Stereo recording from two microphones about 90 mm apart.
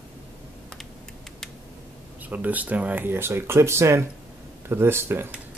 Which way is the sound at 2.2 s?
20° right (ahead or behind).